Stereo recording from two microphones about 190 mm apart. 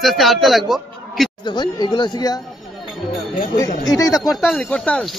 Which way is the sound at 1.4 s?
25° left (ahead or behind).